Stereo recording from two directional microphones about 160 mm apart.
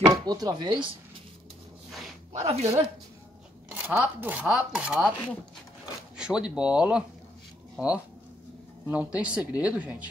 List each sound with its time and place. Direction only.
0.0 s speech: 25° right (ahead or behind)
2.3 s speech: 45° right (ahead or behind)
3.7 s speech: 10° right (ahead or behind)
6.1 s speech: 5° right (ahead or behind)